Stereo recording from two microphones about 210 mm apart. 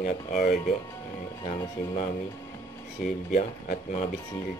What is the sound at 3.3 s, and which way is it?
Speech, 35° left (ahead or behind).